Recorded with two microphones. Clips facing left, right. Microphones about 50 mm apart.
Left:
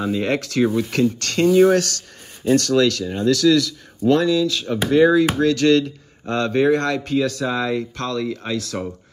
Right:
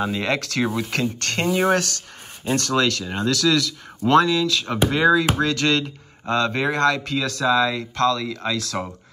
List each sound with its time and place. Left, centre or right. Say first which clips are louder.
0.0 s speech: left 2 dB; right
0.7 s speech: left 4 dB; right
1.0 s speech: left 5 dB; right